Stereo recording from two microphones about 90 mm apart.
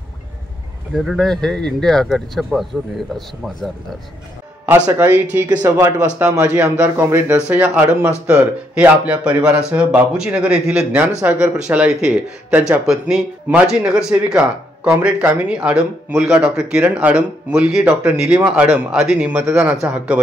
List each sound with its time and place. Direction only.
0.9 s speech: centre (ahead or behind)
4.9 s speech: 20° right (ahead or behind)
7.0 s speech: 25° right (ahead or behind)
7.4 s speech: 15° right (ahead or behind)
12.8 s speech: 5° right (ahead or behind)